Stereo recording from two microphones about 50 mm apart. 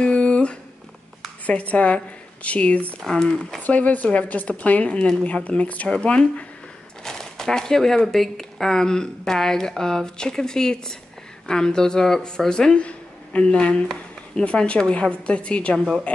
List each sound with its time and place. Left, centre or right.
0.0 s a sound: centre
1.4 s a woman's voice: left
3.0 s speech: centre
3.6 s a woman's voice: left
7.1 s a woman's voice: centre